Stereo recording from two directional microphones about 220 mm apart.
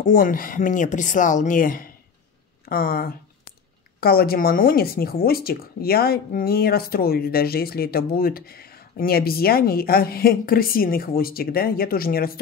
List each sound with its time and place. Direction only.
0.1 s speech: 40° left (ahead or behind)